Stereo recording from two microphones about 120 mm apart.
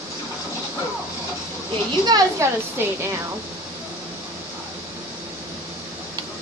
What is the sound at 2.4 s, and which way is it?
Speech, 25° right (ahead or behind).